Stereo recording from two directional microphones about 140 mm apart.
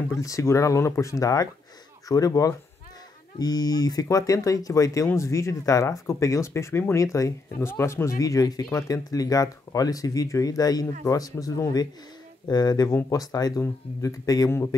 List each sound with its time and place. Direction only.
0.1 s speech: 20° left (ahead or behind)